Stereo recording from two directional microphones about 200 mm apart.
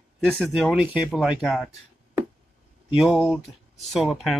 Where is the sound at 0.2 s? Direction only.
5° right (ahead or behind).